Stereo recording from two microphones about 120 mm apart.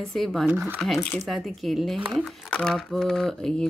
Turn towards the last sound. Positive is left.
turn(degrees=5)  # may be behind; listen again after turning